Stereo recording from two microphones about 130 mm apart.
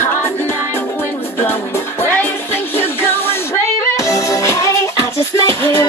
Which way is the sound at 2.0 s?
15° left (ahead or behind).